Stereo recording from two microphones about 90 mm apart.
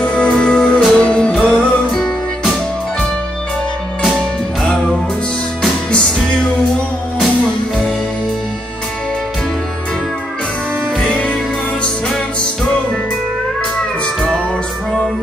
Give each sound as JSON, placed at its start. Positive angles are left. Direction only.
{"t": 0.0, "sound": "music", "side_deg": 10}
{"t": 5.9, "sound": "music", "side_deg": 10}
{"t": 11.0, "sound": "music", "side_deg": 10}